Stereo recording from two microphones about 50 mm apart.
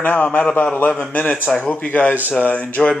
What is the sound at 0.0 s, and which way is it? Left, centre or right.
A man's voice, left.